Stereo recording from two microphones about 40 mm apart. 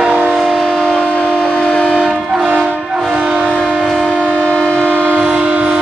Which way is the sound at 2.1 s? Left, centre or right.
Centre.